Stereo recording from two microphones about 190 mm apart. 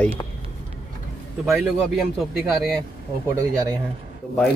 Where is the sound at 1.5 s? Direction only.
Centre (ahead or behind).